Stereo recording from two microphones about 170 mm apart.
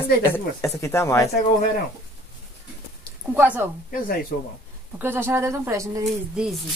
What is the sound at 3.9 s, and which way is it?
Speech, 55° left (ahead or behind).